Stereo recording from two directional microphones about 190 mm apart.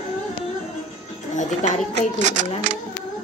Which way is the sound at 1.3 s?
40° left (ahead or behind).